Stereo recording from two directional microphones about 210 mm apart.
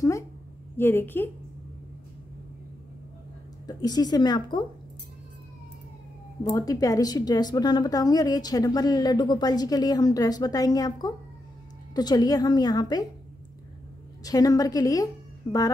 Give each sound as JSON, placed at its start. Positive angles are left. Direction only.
{"t": 0.7, "sound": "a woman's voice", "side_deg": 10}
{"t": 3.6, "sound": "a woman's voice", "side_deg": 20}
{"t": 6.4, "sound": "a woman's voice", "side_deg": 15}
{"t": 14.2, "sound": "a woman's voice", "side_deg": 15}